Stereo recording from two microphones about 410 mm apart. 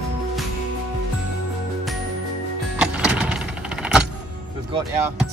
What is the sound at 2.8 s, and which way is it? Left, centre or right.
Vehicle, centre.